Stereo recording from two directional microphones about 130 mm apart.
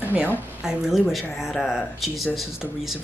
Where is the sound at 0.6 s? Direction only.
5° right (ahead or behind).